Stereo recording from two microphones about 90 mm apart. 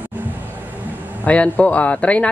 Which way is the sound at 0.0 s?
20° right (ahead or behind).